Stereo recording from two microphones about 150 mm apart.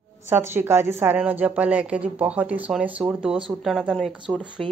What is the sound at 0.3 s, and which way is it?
A woman's voice, 15° right (ahead or behind).